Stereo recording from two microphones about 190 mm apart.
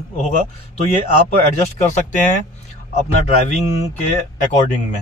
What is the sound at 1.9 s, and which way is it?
Speech, 40° left (ahead or behind).